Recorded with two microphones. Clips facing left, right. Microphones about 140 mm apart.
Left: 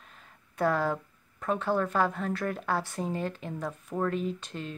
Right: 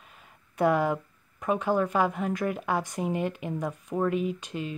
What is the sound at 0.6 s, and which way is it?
Speech, 15° right (ahead or behind).